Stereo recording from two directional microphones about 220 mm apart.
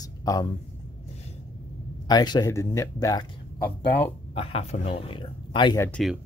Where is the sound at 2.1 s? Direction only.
20° left (ahead or behind).